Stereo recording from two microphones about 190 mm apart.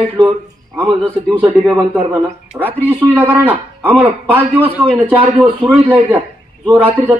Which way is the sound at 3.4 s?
10° right (ahead or behind).